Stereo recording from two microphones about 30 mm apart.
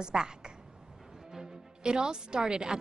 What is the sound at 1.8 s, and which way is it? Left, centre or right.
Speech, right.